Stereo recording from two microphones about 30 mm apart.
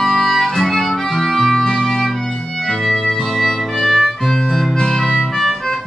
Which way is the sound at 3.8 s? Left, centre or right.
Centre.